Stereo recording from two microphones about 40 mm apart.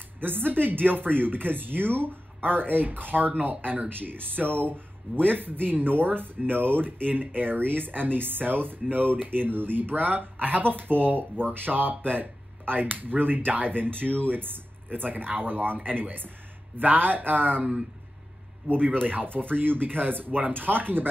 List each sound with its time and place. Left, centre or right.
0.2 s speech: right
18.7 s speech: right